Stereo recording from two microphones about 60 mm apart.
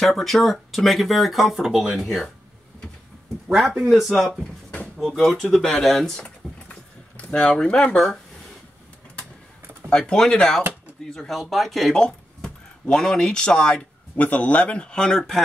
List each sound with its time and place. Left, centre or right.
0.0 s speech: centre
3.4 s speech: centre
4.3 s speech: centre
5.0 s speech: centre
6.2 s a sound: centre
7.4 s speech: centre
9.8 s speech: centre
11.5 s speech: centre
11.9 s a sound: centre
12.8 s speech: centre